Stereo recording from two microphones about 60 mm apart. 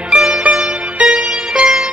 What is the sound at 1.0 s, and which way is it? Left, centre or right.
Music, centre.